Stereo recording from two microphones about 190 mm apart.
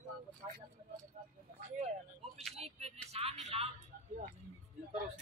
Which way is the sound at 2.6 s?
35° right (ahead or behind).